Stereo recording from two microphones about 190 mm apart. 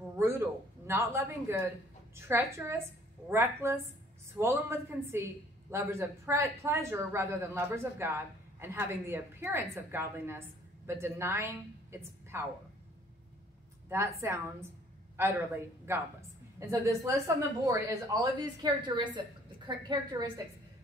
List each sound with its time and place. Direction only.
0.1 s a sound: 15° right (ahead or behind)
0.8 s a woman's voice: 15° right (ahead or behind)
13.8 s a woman's voice: 15° right (ahead or behind)